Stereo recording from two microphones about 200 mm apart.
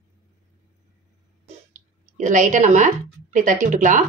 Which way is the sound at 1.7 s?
40° right (ahead or behind).